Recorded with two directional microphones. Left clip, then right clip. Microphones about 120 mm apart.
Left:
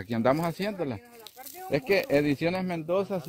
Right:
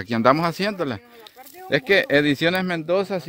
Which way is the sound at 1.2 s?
35° left (ahead or behind).